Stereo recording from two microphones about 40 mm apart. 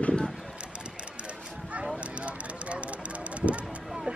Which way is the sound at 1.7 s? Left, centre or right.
Right.